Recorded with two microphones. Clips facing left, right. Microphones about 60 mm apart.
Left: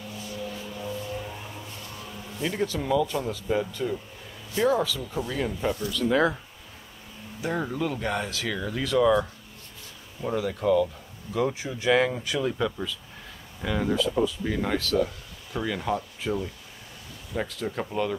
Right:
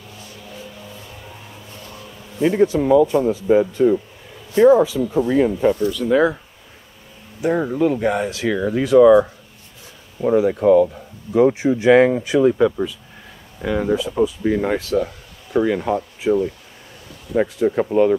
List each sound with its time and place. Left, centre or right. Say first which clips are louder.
2.4 s speech: right 12 dB; right
5.9 s speech: right 7 dB; centre
7.4 s speech: right 10 dB; centre